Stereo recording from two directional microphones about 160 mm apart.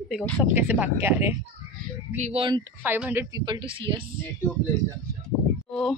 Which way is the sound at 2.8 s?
10° right (ahead or behind).